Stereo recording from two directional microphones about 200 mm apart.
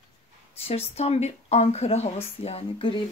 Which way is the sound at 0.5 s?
30° left (ahead or behind).